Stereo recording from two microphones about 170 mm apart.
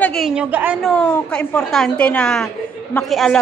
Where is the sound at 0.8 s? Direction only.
5° left (ahead or behind).